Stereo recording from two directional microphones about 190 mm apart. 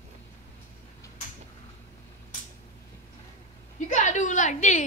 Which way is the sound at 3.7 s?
40° left (ahead or behind).